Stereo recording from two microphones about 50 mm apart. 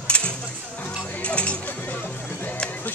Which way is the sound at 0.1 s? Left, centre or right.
Left.